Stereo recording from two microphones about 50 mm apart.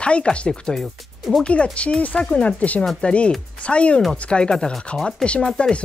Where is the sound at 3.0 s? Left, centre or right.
Centre.